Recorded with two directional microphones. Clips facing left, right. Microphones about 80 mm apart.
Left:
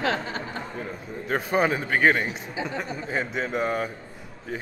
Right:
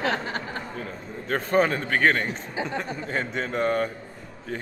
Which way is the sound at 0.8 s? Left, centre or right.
Centre.